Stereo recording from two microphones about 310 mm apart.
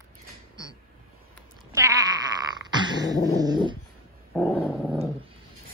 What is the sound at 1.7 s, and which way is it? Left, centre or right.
Sheep, centre.